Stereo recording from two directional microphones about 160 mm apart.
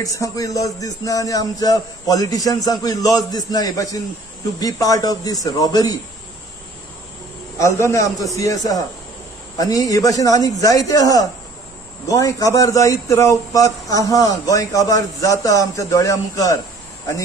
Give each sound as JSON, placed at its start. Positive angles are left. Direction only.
{"t": 0.0, "sound": "a man's voice", "side_deg": 20}
{"t": 7.5, "sound": "a man's voice", "side_deg": 15}